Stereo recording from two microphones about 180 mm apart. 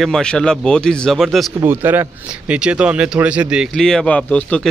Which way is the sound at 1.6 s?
10° right (ahead or behind).